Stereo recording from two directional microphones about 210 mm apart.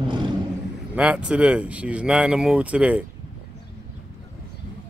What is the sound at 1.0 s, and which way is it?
Speech, 5° right (ahead or behind).